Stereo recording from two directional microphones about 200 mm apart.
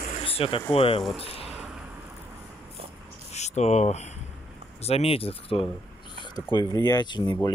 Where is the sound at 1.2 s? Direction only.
30° left (ahead or behind).